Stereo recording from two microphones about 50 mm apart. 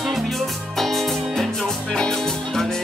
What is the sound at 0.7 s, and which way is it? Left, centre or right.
Music, centre.